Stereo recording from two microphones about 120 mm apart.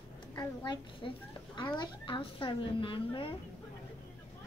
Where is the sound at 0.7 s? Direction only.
40° left (ahead or behind).